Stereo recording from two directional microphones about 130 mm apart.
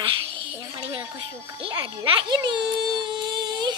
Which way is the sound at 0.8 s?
45° right (ahead or behind).